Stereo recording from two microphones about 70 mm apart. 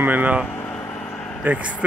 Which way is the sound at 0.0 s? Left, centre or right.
Right.